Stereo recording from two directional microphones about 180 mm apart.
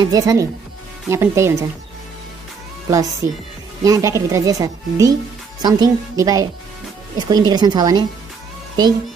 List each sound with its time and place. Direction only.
0.0 s speech: 20° right (ahead or behind)
2.9 s speech: 20° right (ahead or behind)